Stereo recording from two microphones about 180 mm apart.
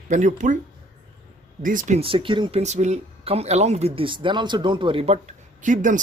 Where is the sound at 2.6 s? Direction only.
40° right (ahead or behind).